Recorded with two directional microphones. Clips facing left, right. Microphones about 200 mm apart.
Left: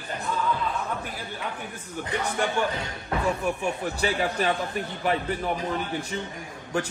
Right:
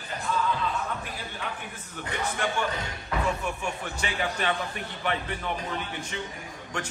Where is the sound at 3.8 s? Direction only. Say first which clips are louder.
Left 6 dB; 35° left (ahead or behind).